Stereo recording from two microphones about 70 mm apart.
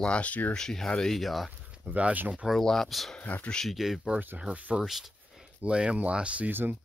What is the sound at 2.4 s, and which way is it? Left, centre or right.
Speech, centre.